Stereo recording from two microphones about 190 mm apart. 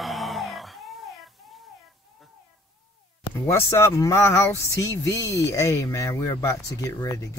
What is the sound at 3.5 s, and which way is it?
Speech, 15° left (ahead or behind).